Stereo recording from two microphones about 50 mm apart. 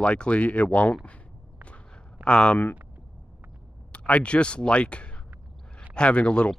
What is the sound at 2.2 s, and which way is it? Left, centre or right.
Speech, left.